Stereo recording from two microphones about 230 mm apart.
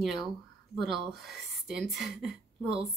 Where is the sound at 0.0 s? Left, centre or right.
Centre.